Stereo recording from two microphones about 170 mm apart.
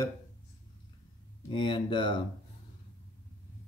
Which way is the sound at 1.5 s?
30° left (ahead or behind).